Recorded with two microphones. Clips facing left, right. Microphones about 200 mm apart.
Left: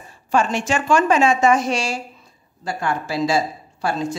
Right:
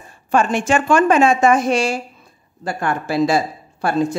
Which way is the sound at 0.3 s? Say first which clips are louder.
Right 3 dB; 55° right (ahead or behind).